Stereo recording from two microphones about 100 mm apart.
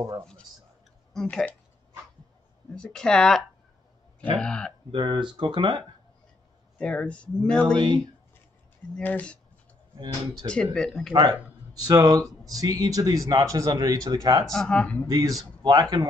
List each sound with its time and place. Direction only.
1.2 s speech: 15° left (ahead or behind)
2.7 s speech: 10° left (ahead or behind)
4.9 s speech: 55° right (ahead or behind)
6.8 s speech: 10° left (ahead or behind)
9.0 s speech: 15° left (ahead or behind)
10.4 s speech: 10° left (ahead or behind)
11.9 s speech: 35° right (ahead or behind)
14.5 s speech: 5° left (ahead or behind)
15.0 s speech: 35° right (ahead or behind)